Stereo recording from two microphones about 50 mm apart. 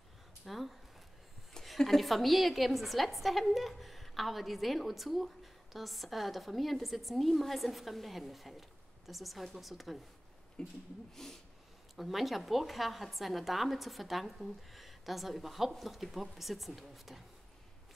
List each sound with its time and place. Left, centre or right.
0.5 s a woman's voice: centre
10.6 s speech: centre
12.0 s a woman's voice: centre